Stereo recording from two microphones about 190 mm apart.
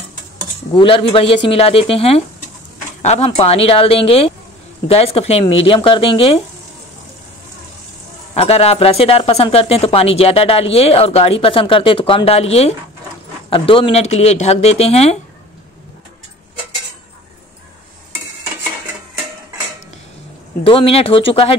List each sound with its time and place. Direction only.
0.7 s speech: 30° left (ahead or behind)
8.4 s speech: 30° left (ahead or behind)
20.6 s speech: 30° left (ahead or behind)